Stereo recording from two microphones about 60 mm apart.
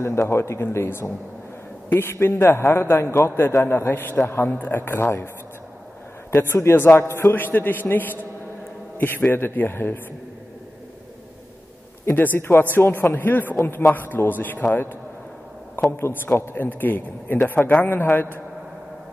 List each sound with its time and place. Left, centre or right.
0.0 s a man's voice: left
6.3 s a man's voice: left
12.4 s a man's voice: left
16.3 s a man's voice: left